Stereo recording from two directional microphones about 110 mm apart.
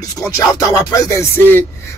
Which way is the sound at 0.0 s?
30° left (ahead or behind).